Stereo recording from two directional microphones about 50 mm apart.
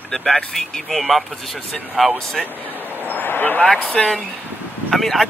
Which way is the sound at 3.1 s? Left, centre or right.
Left.